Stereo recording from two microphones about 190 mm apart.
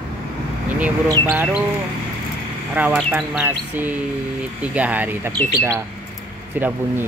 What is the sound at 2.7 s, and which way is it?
Speech, 10° right (ahead or behind).